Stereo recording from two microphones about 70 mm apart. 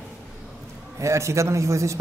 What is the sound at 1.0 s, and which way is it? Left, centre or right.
Speech, right.